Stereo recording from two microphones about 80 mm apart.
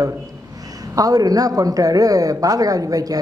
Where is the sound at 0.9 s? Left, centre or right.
Right.